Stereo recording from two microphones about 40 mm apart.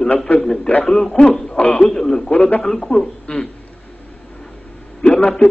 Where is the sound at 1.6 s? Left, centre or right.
Left.